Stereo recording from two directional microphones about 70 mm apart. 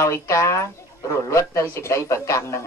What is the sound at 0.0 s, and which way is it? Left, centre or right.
Speech, left.